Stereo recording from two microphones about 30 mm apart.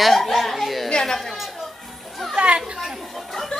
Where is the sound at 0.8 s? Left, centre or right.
Centre.